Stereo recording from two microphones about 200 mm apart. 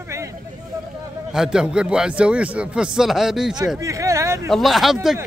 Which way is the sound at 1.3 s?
5° right (ahead or behind).